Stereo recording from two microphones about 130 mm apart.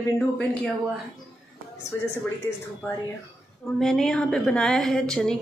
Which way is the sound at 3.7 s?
5° left (ahead or behind).